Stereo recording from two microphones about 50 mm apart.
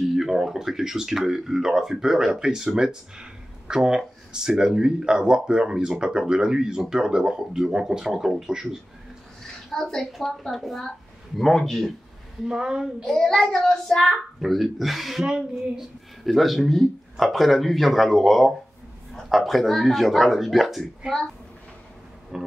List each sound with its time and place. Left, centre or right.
0.1 s speech: centre
9.7 s speech: centre
12.4 s speech: centre
13.0 s speech: centre
15.2 s speech: centre
16.3 s speech: centre
22.3 s speech: centre